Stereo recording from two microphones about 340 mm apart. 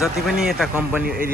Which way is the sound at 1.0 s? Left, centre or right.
Right.